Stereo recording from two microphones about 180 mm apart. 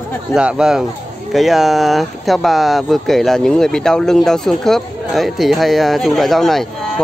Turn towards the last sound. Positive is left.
turn(degrees=0)  # may be behind; listen again after turning